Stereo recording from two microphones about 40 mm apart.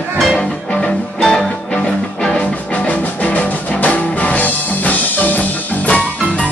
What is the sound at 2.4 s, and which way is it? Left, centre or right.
Music, left.